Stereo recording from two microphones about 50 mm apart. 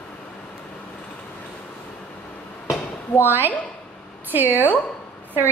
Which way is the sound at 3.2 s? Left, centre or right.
Right.